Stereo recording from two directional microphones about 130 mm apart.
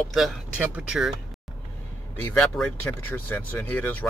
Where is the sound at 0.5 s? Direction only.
10° right (ahead or behind).